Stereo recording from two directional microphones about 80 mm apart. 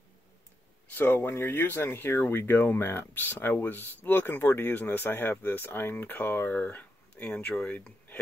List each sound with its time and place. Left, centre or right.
0.9 s speech: left